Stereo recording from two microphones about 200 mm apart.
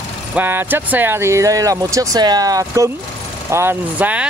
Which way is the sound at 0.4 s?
10° right (ahead or behind).